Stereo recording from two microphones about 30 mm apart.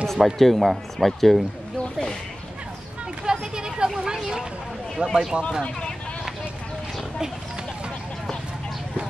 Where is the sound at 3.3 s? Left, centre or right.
Right.